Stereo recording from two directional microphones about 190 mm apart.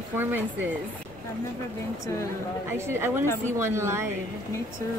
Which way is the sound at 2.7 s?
15° right (ahead or behind).